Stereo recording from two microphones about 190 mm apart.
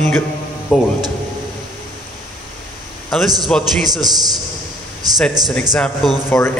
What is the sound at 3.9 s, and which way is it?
Speech, 20° right (ahead or behind).